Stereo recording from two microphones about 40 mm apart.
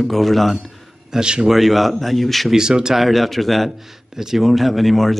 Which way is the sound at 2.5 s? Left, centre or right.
Centre.